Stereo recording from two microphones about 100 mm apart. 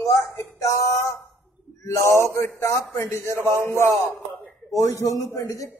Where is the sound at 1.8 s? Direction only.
30° left (ahead or behind).